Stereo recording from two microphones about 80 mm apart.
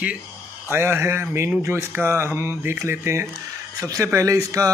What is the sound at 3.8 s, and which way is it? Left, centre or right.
Speech, right.